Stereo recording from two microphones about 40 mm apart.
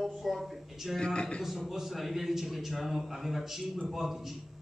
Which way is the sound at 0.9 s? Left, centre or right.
Centre.